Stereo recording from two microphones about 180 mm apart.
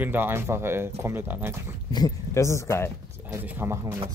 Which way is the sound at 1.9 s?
20° left (ahead or behind).